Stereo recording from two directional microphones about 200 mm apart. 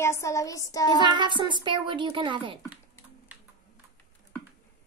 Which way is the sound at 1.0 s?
25° right (ahead or behind).